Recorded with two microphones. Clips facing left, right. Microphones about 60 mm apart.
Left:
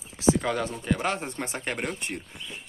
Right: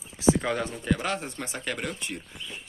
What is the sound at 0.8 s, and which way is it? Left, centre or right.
Speech, centre.